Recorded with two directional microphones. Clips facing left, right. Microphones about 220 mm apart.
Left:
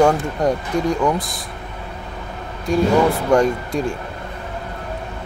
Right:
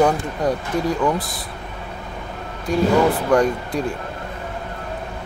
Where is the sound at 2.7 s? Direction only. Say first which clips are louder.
Left 1 dB; centre (ahead or behind).